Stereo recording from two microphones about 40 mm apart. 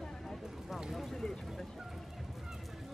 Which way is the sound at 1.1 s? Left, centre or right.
Centre.